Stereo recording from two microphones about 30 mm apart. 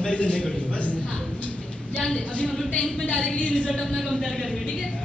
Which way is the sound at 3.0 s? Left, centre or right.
Left.